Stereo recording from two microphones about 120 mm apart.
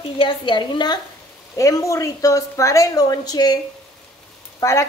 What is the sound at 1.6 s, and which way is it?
A woman's voice, 25° left (ahead or behind).